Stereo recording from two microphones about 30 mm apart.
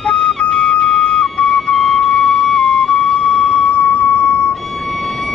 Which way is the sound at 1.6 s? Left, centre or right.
Centre.